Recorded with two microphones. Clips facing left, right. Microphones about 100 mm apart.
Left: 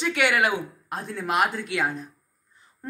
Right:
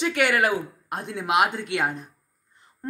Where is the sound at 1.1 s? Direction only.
10° right (ahead or behind).